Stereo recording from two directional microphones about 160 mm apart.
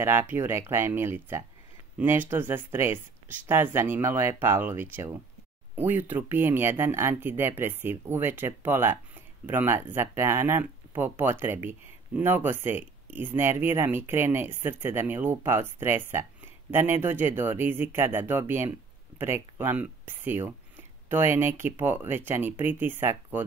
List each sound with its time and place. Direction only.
0.0 s speech: 15° right (ahead or behind)